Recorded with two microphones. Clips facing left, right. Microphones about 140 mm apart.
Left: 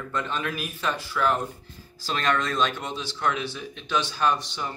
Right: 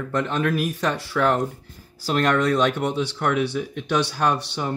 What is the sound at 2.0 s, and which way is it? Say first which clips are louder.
Speech: right 6 dB; 55° right (ahead or behind).